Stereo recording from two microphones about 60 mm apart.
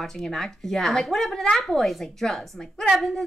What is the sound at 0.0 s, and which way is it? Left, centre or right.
Speech, centre.